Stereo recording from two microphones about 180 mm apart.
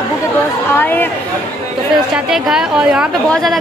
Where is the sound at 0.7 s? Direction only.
10° left (ahead or behind).